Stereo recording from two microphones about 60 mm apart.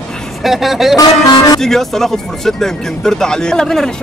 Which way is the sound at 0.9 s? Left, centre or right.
Left.